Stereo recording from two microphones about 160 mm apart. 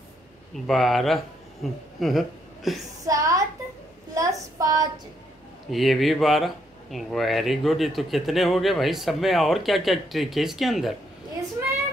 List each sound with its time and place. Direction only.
0.7 s speech: centre (ahead or behind)
3.1 s a woman's voice: 20° right (ahead or behind)
5.7 s speech: centre (ahead or behind)